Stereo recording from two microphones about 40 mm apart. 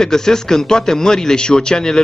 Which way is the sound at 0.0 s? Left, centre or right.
Centre.